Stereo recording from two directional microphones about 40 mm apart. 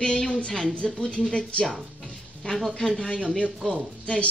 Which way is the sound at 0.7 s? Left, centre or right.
Left.